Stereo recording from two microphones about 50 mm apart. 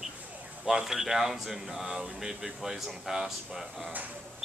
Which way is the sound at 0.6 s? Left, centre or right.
Centre.